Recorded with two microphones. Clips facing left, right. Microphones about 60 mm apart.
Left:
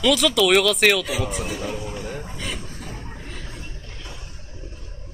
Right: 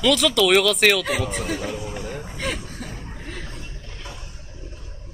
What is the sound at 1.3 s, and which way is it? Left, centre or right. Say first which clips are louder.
Speech: right 1 dB; right.